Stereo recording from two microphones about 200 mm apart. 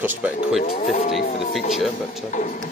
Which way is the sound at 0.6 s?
35° left (ahead or behind).